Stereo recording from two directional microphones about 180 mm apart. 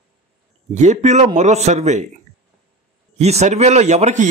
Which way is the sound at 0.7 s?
40° right (ahead or behind).